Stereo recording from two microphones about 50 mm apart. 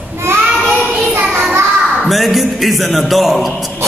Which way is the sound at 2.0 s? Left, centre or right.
Centre.